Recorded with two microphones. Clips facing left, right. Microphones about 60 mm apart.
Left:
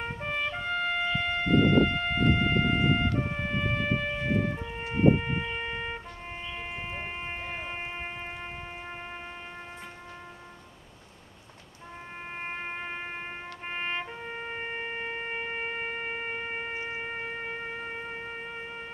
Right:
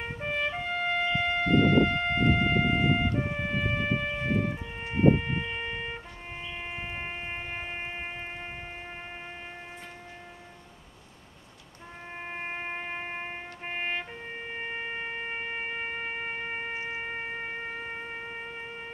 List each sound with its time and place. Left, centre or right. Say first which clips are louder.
0.2 s trumpet: right 3 dB; centre
3.1 s music: even; centre
4.8 s siren: even; centre
12.4 s music: even; centre
15.0 s shofar: left 1 dB; centre